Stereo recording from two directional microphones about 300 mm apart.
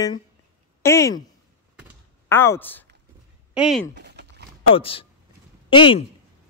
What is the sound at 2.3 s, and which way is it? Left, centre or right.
A man's voice, centre.